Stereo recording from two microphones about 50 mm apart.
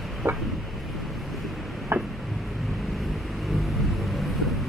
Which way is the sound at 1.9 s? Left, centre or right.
Right.